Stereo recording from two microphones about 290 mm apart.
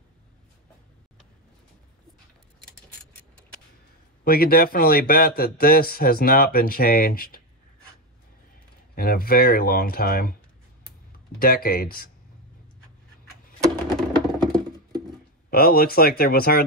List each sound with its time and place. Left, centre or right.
4.2 s a man's voice: left
8.9 s a man's voice: left
11.4 s a man's voice: left
13.9 s a sound: centre
15.5 s a man's voice: left